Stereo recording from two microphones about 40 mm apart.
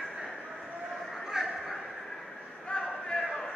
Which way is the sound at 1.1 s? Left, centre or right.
Centre.